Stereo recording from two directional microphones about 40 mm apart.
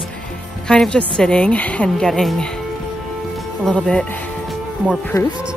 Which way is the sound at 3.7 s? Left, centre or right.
Left.